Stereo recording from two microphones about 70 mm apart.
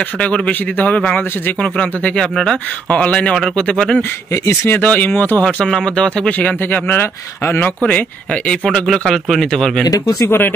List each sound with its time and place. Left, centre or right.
0.2 s speech: left
2.9 s speech: centre
4.6 s speech: left
5.4 s speech: centre
6.6 s speech: left
7.8 s speech: centre
8.8 s speech: centre
9.8 s speech: left
10.2 s speech: left